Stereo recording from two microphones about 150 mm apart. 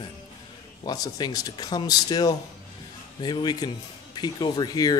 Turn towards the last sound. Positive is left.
turn(degrees=25)  # may be behind; listen again after turning